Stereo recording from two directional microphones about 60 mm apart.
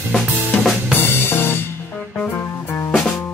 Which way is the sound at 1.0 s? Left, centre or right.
Left.